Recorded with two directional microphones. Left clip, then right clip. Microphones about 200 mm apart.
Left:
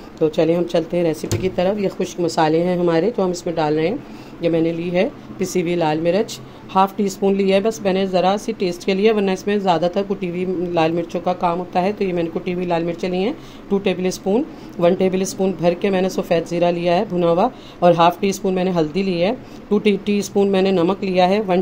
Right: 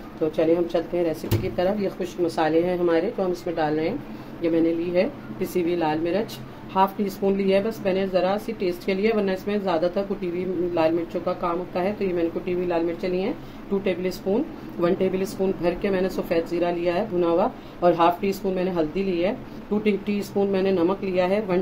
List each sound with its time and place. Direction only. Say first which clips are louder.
0.4 s speech: left 2 dB; 55° left (ahead or behind)